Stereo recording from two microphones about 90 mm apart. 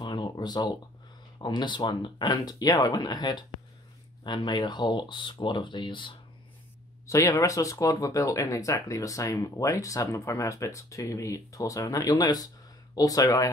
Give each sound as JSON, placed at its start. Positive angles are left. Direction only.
{"t": 0.0, "sound": "a sound", "side_deg": 55}
{"t": 1.4, "sound": "speech", "side_deg": 55}
{"t": 7.1, "sound": "speech", "side_deg": 35}